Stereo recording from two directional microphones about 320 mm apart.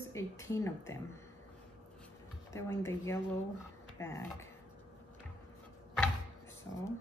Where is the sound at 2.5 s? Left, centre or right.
Centre.